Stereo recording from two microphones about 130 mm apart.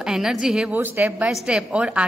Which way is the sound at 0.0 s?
5° right (ahead or behind).